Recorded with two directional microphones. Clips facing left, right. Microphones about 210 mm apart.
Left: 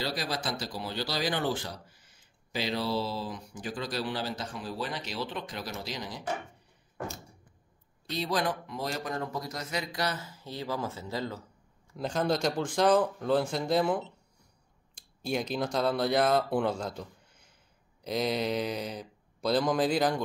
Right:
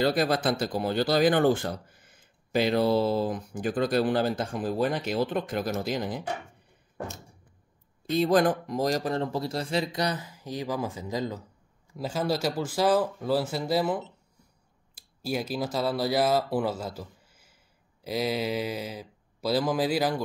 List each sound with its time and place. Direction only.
0.0 s speech: 55° right (ahead or behind)
8.1 s speech: 50° right (ahead or behind); by 20.2 s 5° right (ahead or behind)